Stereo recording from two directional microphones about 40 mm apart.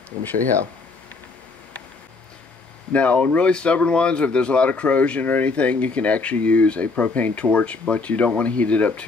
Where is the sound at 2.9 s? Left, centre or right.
Left.